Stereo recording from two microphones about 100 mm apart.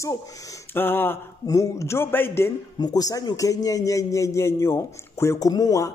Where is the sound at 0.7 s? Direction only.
20° left (ahead or behind).